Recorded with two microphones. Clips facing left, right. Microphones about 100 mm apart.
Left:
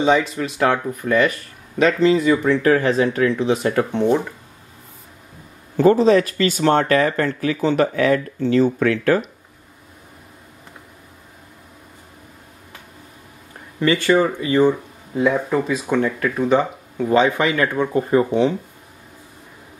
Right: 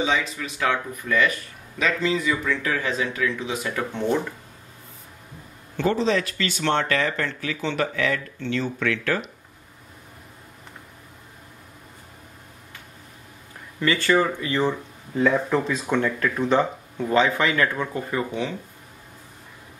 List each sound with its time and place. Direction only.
0.4 s speech: 40° left (ahead or behind)
3.9 s speech: 15° left (ahead or behind)
5.8 s speech: 40° left (ahead or behind)
13.7 s speech: 15° left (ahead or behind)